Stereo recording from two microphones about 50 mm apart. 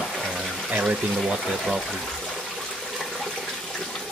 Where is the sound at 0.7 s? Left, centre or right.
Right.